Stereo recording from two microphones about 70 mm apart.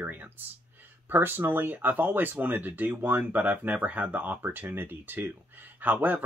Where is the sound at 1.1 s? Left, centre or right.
Right.